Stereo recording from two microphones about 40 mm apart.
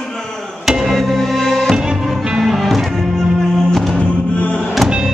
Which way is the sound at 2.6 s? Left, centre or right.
Centre.